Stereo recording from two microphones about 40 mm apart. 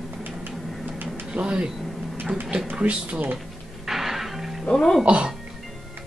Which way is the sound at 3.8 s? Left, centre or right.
Centre.